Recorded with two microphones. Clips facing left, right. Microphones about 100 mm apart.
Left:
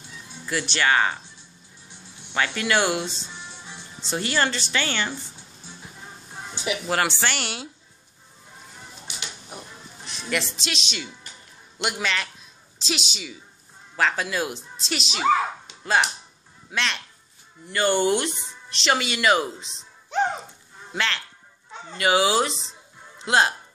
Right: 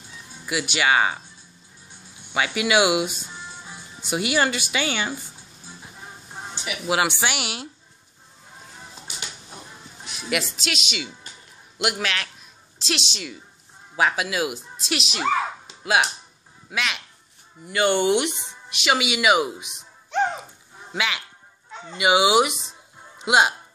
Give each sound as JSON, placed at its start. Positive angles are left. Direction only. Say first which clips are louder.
{"t": 0.5, "sound": "speech", "louder": "right 1 dB", "side_deg": -10}
{"t": 2.3, "sound": "speech", "louder": "right 2 dB", "side_deg": -10}
{"t": 6.9, "sound": "speech", "louder": "right 3 dB", "side_deg": -10}
{"t": 10.0, "sound": "a woman's voice", "louder": "right 1 dB", "side_deg": -5}
{"t": 13.9, "sound": "a woman's voice", "louder": "right 1 dB", "side_deg": -10}
{"t": 17.6, "sound": "speech", "louder": "right 1 dB", "side_deg": -15}
{"t": 20.9, "sound": "speech", "louder": "even", "side_deg": -10}